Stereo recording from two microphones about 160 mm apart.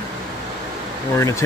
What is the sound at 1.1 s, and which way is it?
Speech, 20° left (ahead or behind).